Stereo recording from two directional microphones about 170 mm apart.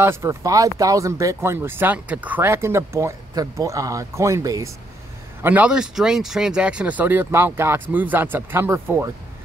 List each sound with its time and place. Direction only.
0.0 s speech: 15° right (ahead or behind)